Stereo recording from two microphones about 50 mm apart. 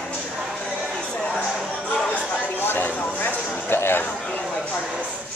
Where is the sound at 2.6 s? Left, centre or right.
Left.